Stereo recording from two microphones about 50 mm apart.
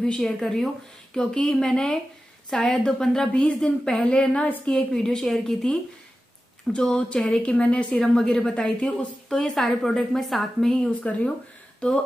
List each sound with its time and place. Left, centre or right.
0.0 s a woman's voice: centre
6.7 s a woman's voice: centre
11.0 s a woman's voice: left